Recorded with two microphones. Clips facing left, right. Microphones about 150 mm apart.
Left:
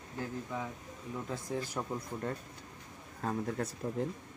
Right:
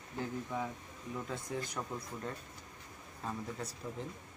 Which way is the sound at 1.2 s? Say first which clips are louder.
Left 4 dB; 5° left (ahead or behind).